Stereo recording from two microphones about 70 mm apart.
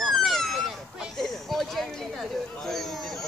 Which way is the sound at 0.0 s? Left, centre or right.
Centre.